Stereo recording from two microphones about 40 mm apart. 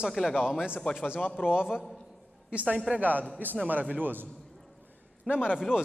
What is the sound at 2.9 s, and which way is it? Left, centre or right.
A man's voice, right.